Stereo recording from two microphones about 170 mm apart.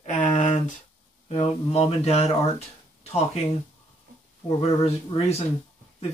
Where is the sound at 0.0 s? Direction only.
45° left (ahead or behind).